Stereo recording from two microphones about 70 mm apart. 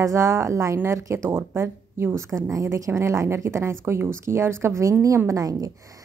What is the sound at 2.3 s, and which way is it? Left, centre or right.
A woman's voice, right.